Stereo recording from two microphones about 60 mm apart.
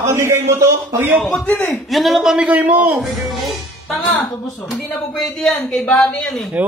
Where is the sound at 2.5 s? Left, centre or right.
Right.